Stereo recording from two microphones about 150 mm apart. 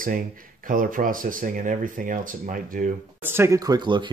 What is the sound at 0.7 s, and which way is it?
Speech, 65° right (ahead or behind).